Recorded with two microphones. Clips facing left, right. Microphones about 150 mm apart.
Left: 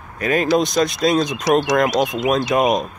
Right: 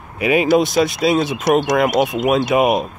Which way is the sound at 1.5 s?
50° right (ahead or behind).